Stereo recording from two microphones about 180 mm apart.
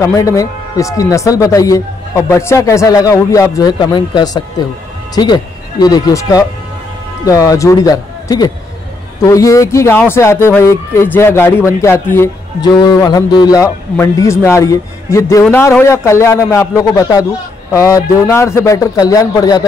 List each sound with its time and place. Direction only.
0.0 s a man's voice: 20° left (ahead or behind)